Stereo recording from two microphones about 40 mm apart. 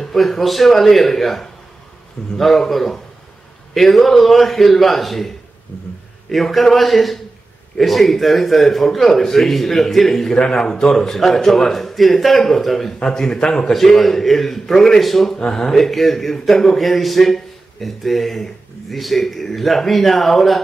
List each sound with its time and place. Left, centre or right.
0.0 s a man's voice: centre
10.3 s a man's voice: centre
15.3 s speech: left
15.6 s a man's voice: centre